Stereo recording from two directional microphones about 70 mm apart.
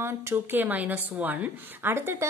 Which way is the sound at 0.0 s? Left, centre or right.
Right.